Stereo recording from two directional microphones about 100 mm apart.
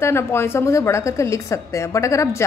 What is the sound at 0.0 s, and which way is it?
A woman's voice, 25° left (ahead or behind).